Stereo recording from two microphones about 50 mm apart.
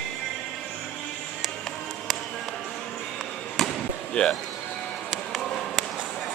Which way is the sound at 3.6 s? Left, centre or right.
Centre.